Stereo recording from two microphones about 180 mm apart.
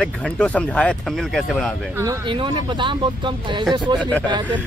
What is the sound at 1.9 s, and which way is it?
Speech, 20° right (ahead or behind).